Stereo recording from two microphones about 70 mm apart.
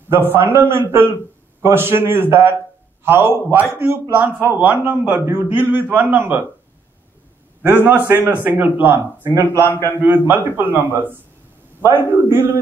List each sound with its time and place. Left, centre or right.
0.1 s a man's voice: right
5.2 s a man's voice: right
5.5 s speech: right
7.6 s speech: right
9.5 s a man's voice: left
10.0 s a man's voice: right